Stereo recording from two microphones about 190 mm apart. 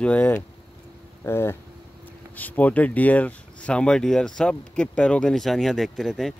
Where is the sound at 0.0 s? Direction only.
10° left (ahead or behind).